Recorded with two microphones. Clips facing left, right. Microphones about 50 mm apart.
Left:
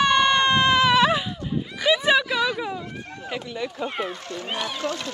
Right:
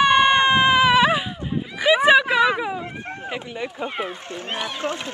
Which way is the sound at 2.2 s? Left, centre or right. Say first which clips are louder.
Right 5 dB; right.